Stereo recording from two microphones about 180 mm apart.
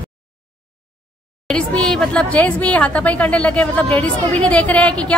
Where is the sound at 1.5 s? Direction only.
5° left (ahead or behind).